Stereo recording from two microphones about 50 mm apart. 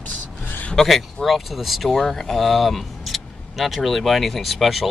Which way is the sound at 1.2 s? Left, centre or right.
Centre.